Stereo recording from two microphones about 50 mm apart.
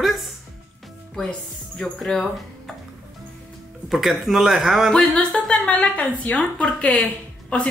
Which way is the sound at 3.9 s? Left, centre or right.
Centre.